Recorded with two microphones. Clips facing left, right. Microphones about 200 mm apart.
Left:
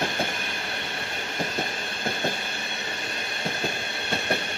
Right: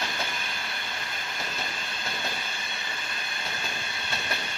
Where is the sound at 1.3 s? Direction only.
50° left (ahead or behind).